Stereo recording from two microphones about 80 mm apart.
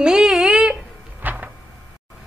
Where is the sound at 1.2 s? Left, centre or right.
Right.